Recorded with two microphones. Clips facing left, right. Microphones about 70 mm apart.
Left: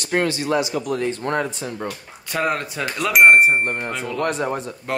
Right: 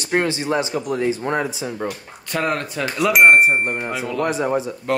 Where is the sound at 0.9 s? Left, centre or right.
Centre.